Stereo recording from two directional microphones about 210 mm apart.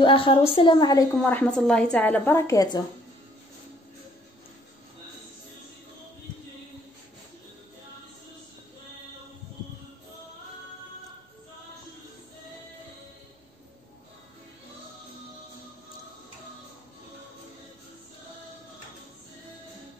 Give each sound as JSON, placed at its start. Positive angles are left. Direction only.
{"t": 0.0, "sound": "a woman's voice", "side_deg": 25}
{"t": 1.1, "sound": "a woman's voice", "side_deg": 5}